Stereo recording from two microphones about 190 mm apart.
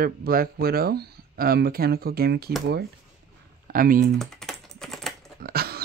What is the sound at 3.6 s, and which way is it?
Speech, 50° right (ahead or behind).